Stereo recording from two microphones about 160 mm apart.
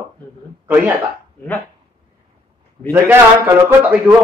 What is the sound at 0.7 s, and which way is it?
Speech, 10° right (ahead or behind).